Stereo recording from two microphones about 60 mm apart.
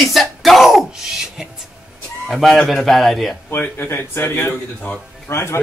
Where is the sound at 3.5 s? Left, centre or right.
Left.